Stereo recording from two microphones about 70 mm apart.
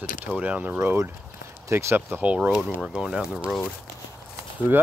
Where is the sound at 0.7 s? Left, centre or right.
Right.